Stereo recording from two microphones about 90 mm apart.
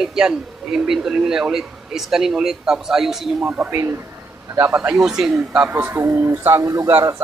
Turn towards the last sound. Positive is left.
turn(degrees=-30)  # may be behind; listen again after turning